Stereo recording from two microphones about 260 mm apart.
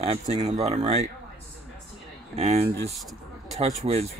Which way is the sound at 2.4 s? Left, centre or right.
Right.